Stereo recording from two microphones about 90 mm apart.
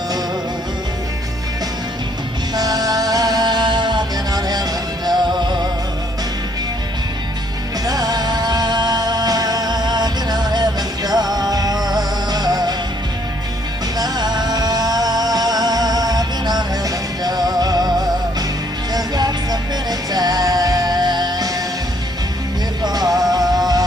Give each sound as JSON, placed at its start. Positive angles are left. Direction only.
{"t": 2.5, "sound": "music", "side_deg": -45}
{"t": 7.8, "sound": "music", "side_deg": -45}
{"t": 13.9, "sound": "music", "side_deg": -50}
{"t": 22.8, "sound": "music", "side_deg": -45}